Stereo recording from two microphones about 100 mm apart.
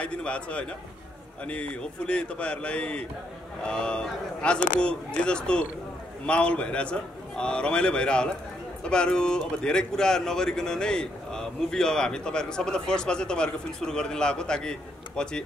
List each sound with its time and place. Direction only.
0.0 s speech: 10° left (ahead or behind)